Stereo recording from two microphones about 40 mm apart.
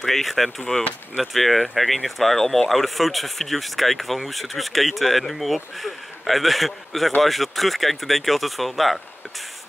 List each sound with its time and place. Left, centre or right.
0.0 s speech: centre
0.6 s speech: centre
1.2 s speech: centre